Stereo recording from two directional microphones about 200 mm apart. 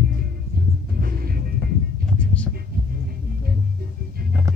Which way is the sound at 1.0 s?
50° right (ahead or behind).